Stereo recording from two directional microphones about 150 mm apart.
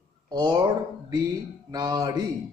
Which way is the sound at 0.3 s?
30° right (ahead or behind).